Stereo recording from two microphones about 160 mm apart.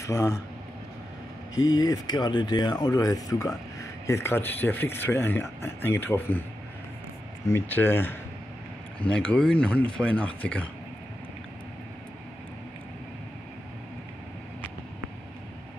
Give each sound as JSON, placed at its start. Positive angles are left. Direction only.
{"t": 0.0, "sound": "speech", "side_deg": 20}
{"t": 1.5, "sound": "speech", "side_deg": 20}
{"t": 7.4, "sound": "speech", "side_deg": 15}